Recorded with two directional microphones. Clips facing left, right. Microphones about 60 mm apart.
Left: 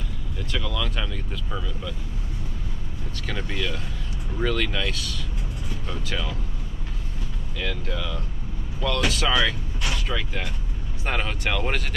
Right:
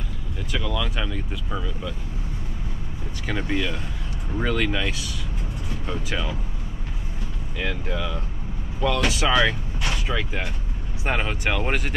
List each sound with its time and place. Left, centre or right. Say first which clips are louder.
0.5 s speech: right 2 dB; centre
3.3 s speech: right 4 dB; centre
7.5 s speech: right 2 dB; centre